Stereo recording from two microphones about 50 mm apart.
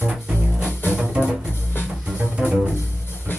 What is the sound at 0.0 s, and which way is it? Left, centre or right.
Music, centre.